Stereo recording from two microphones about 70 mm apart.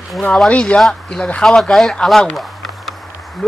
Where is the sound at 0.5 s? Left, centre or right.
Centre.